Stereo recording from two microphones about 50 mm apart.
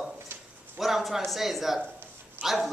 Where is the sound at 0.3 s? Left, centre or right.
Right.